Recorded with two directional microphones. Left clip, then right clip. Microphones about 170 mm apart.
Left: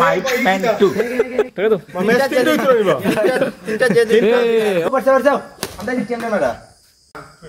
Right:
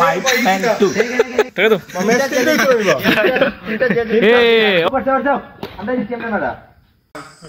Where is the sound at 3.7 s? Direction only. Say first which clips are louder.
Left 2 dB; 70° left (ahead or behind).